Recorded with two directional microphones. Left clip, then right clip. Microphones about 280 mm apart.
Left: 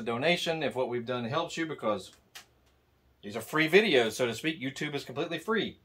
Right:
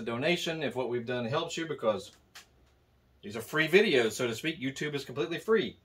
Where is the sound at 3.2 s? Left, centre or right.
Centre.